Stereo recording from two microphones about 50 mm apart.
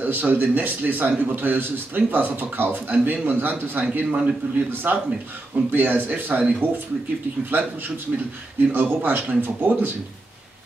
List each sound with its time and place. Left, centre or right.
0.0 s a man's voice: right
8.7 s a man's voice: right